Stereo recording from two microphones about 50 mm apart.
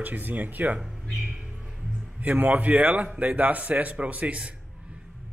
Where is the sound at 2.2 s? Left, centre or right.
Right.